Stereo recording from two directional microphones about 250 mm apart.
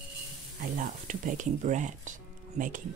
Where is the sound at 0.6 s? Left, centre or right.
Right.